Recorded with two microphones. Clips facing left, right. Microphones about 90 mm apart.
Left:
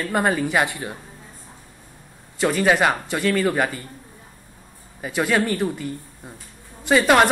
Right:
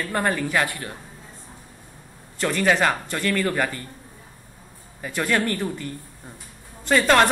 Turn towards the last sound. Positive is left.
turn(degrees=10)  # may be behind; listen again after turning